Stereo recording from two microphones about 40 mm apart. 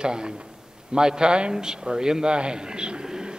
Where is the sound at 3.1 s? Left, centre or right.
Centre.